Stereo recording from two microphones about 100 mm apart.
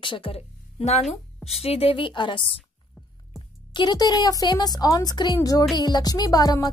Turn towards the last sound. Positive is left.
turn(degrees=40)  # may be behind; listen again after turning